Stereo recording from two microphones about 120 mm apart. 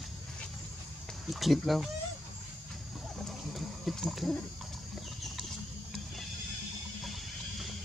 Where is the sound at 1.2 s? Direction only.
Centre (ahead or behind).